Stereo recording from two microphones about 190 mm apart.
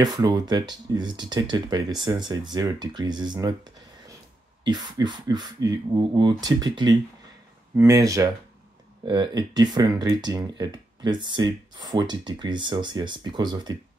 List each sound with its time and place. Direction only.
0.0 s speech: 20° right (ahead or behind)